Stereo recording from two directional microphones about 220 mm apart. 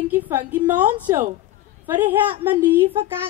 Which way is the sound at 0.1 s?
5° right (ahead or behind).